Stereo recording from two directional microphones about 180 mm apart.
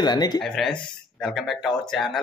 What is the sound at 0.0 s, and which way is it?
Speech, 25° left (ahead or behind).